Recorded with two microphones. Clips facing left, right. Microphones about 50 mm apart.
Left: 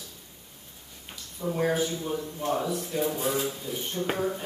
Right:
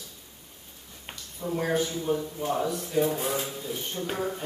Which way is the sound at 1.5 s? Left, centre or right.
Centre.